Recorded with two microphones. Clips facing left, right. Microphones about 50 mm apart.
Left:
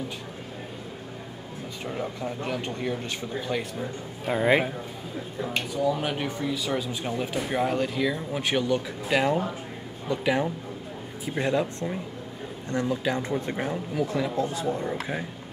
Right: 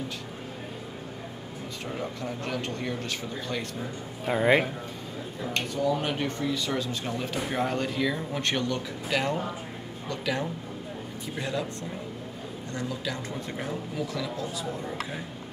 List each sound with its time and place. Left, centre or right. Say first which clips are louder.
1.9 s speech: left 3 dB; centre
4.3 s speech: even; centre
5.8 s speech: left 1 dB; centre
11.3 s speech: left 6 dB; left